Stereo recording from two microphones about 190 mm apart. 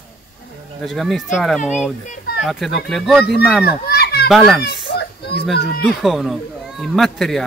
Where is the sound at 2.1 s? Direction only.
50° left (ahead or behind).